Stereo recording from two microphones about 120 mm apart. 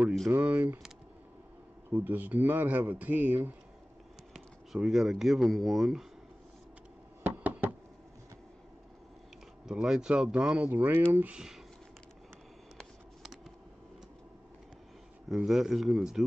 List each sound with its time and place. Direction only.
0.3 s speech: 15° right (ahead or behind)
1.9 s speech: 15° right (ahead or behind)
4.3 s speech: 5° right (ahead or behind)
7.2 s knock: 10° right (ahead or behind)
9.7 s speech: 5° right (ahead or behind)
12.7 s a sound: centre (ahead or behind)
15.2 s speech: centre (ahead or behind)